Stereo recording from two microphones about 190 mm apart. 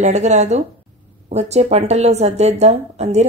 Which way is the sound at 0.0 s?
40° right (ahead or behind).